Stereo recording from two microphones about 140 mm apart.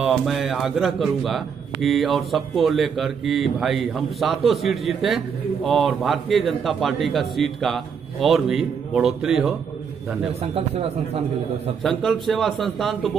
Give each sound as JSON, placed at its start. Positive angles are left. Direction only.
{"t": 0.0, "sound": "a man's voice", "side_deg": 0}
{"t": 10.4, "sound": "a man's voice", "side_deg": -45}
{"t": 11.8, "sound": "a man's voice", "side_deg": 0}